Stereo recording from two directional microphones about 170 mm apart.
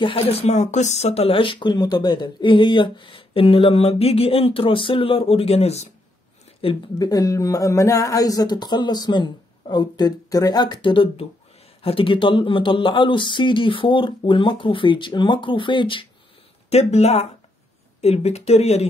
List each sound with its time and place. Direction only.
0.0 s speech: 35° left (ahead or behind)
6.6 s speech: 25° left (ahead or behind)
16.7 s speech: 40° left (ahead or behind)